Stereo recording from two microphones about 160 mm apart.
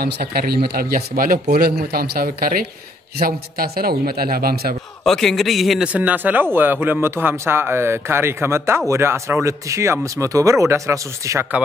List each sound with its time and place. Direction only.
0.0 s a man's voice: 75° right (ahead or behind)
5.0 s a man's voice: centre (ahead or behind); by 11.6 s 15° right (ahead or behind)